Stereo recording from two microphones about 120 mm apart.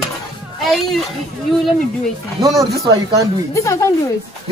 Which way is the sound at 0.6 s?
Centre (ahead or behind).